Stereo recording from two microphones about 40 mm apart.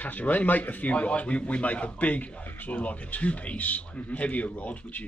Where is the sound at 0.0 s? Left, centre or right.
Left.